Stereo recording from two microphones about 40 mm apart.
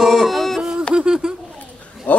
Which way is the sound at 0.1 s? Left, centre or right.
Centre.